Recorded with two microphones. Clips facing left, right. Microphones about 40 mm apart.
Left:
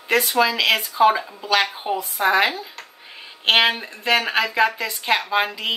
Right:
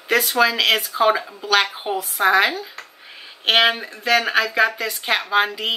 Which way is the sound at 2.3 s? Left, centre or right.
Centre.